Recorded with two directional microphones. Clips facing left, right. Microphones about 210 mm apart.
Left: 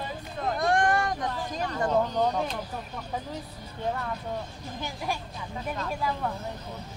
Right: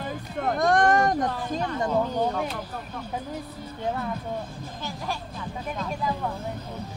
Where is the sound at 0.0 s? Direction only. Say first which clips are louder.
Right 3 dB; 45° right (ahead or behind).